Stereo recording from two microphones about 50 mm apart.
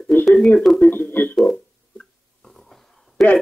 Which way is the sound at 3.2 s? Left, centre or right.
Centre.